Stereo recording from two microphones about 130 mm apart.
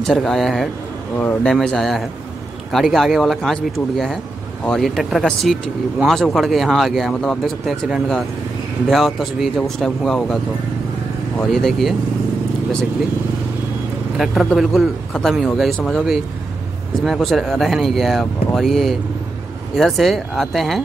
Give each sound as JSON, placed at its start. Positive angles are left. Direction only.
{"t": 0.0, "sound": "speech", "side_deg": 5}
{"t": 1.1, "sound": "speech", "side_deg": 15}
{"t": 1.5, "sound": "speech", "side_deg": 5}
{"t": 14.1, "sound": "speech", "side_deg": 0}